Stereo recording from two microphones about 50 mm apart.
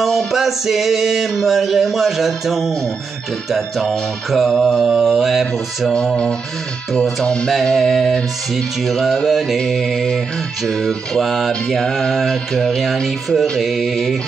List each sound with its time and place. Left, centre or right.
0.3 s mantra: centre
4.5 s mantra: centre
4.9 s mantra: centre
7.6 s mantra: centre